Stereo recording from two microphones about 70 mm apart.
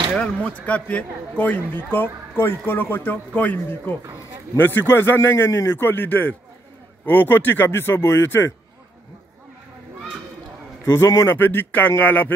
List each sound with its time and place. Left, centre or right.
0.1 s a man's voice: centre
4.6 s a man's voice: left
10.9 s a man's voice: left
11.3 s a man's voice: left